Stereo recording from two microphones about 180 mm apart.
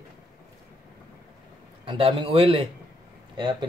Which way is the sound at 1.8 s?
30° right (ahead or behind).